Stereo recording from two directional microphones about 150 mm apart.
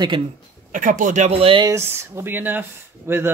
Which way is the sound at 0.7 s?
60° right (ahead or behind).